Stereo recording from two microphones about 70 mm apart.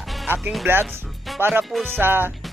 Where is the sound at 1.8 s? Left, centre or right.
Right.